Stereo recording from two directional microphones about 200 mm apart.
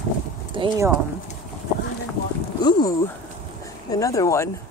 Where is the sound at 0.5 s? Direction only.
25° right (ahead or behind).